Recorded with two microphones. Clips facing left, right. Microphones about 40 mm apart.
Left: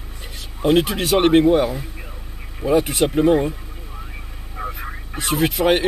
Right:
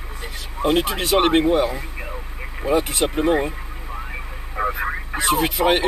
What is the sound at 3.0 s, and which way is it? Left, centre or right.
Speech, centre.